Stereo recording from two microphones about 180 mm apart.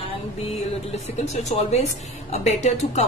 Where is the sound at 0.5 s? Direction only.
35° left (ahead or behind).